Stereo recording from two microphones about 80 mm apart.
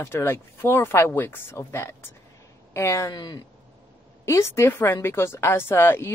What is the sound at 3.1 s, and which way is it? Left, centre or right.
Speech, left.